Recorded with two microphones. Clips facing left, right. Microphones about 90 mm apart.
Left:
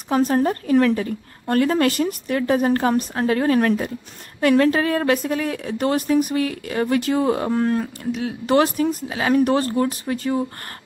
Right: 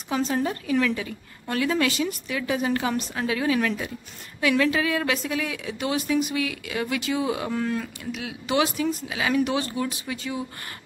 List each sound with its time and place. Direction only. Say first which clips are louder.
0.1 s a woman's voice: left 7 dB; 45° left (ahead or behind)
8.5 s a woman's voice: left 6 dB; 45° left (ahead or behind)